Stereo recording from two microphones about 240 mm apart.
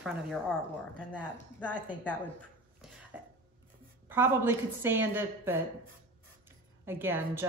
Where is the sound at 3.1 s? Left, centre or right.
Centre.